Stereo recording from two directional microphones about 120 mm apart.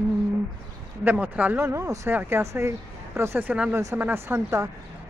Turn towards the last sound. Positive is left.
turn(degrees=-25)  # may be behind; listen again after turning